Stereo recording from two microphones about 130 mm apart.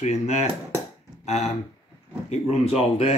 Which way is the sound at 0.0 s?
60° left (ahead or behind).